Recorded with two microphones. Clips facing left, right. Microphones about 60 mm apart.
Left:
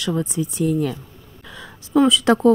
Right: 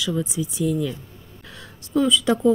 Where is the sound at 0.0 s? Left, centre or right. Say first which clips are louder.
Left 2 dB; left.